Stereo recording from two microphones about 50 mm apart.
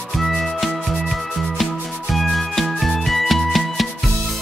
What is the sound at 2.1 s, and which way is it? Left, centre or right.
Music, centre.